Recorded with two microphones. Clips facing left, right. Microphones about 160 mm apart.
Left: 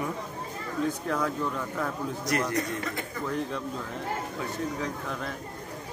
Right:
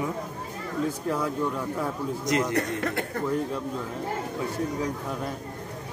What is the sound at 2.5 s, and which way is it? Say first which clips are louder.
Speech: right 4 dB; 60° right (ahead or behind).